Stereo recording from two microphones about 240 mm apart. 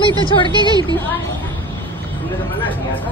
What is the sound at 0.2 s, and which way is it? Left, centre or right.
Speech, left.